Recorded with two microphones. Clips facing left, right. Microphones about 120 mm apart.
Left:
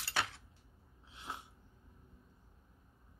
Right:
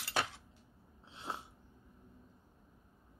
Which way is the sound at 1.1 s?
30° right (ahead or behind).